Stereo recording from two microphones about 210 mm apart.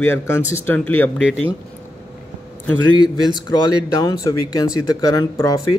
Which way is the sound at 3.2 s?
20° left (ahead or behind).